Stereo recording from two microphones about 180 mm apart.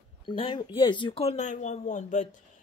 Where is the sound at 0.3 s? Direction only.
25° left (ahead or behind).